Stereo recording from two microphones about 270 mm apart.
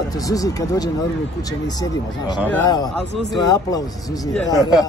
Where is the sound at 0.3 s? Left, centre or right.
Centre.